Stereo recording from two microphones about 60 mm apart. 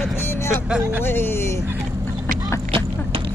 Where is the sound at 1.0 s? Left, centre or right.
Left.